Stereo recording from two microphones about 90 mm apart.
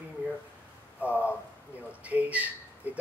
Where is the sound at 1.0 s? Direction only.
15° right (ahead or behind).